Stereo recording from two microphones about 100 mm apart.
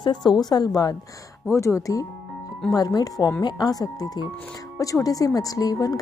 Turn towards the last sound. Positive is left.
turn(degrees=40)  # may be behind; listen again after turning